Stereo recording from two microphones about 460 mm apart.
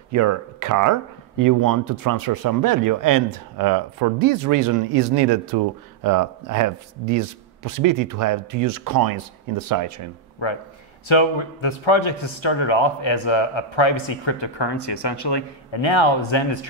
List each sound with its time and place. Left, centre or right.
0.1 s speech: right
6.0 s speech: right
11.1 s speech: left